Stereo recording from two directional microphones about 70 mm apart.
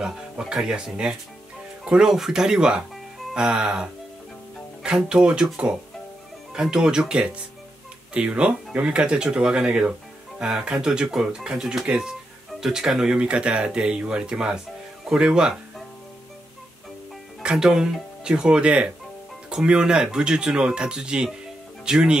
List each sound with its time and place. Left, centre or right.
0.0 s speech: centre
17.4 s speech: centre